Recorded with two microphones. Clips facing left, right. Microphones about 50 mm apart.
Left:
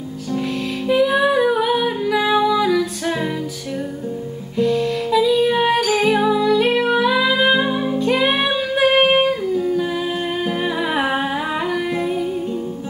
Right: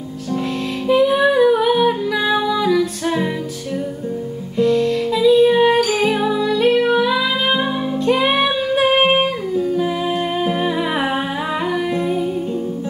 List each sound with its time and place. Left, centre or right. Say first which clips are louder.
0.8 s music: right 2 dB; centre
4.6 s music: right 3 dB; centre
10.6 s humming: right 1 dB; centre
11.6 s music: right 1 dB; centre